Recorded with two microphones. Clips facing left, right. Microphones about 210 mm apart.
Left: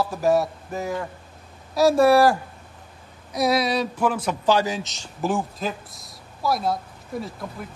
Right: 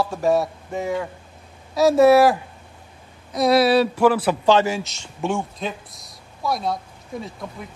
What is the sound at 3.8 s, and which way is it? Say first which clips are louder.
Speech: right 6 dB; 70° right (ahead or behind).